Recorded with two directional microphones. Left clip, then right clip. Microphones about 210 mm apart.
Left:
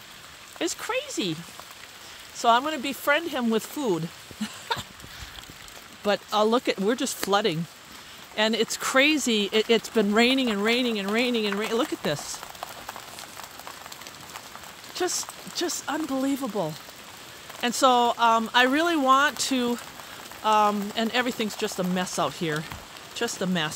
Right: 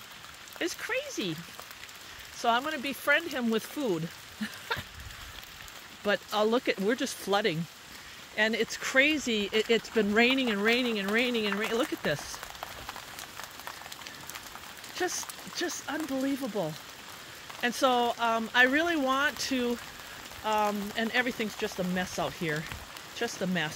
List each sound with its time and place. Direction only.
0.6 s speech: 15° left (ahead or behind)
2.4 s speech: 15° left (ahead or behind)
6.0 s speech: 10° left (ahead or behind)
15.0 s speech: 15° left (ahead or behind)